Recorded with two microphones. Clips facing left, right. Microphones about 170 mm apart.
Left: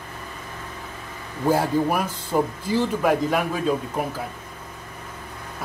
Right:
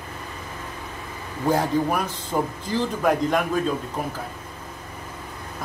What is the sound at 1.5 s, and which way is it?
Speech, 10° left (ahead or behind).